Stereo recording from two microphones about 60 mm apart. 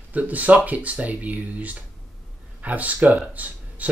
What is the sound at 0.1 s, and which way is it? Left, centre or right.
Speech, right.